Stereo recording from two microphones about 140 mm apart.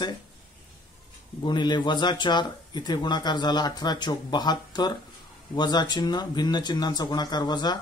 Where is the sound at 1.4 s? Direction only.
35° left (ahead or behind).